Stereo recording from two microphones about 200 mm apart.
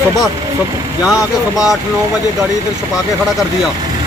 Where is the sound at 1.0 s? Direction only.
Centre (ahead or behind).